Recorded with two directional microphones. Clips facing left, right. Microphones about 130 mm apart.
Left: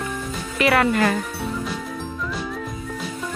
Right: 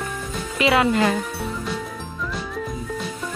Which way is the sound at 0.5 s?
20° right (ahead or behind).